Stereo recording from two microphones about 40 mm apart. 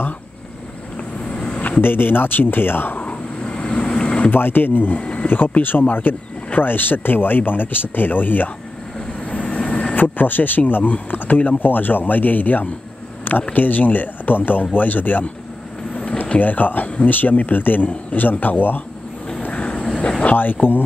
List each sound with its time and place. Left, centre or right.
1.3 s a sound: left
1.8 s speech: left
3.0 s vehicle: left
4.3 s speech: left
9.3 s vehicle: left
9.9 s speech: left
15.9 s a sound: left
16.3 s speech: left
19.5 s vehicle: left
20.6 s speech: left